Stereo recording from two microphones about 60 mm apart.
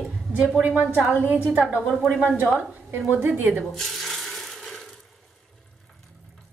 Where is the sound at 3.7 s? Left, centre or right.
Centre.